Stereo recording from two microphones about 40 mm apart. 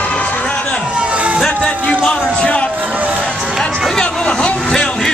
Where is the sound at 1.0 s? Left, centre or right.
Right.